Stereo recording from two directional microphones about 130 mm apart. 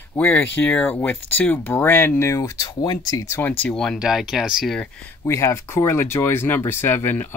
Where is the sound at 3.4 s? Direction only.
10° left (ahead or behind).